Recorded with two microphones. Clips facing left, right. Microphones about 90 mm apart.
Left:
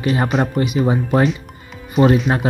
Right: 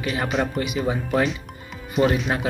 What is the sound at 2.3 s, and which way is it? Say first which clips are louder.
Speech: left 6 dB; 25° left (ahead or behind).